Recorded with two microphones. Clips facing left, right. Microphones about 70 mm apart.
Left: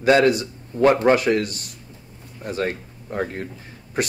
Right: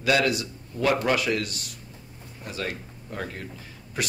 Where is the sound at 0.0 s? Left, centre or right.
Left.